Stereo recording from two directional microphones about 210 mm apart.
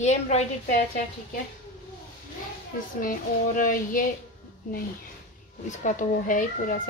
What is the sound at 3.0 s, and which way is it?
A woman's voice, 40° left (ahead or behind).